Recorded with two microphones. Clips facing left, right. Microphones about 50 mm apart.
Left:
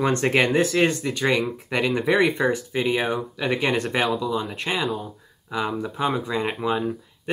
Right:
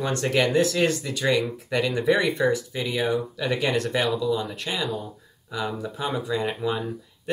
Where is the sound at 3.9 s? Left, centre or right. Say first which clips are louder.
Left 1 dB; left.